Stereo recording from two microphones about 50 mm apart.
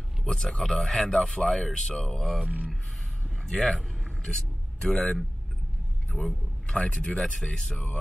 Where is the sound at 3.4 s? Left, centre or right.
Centre.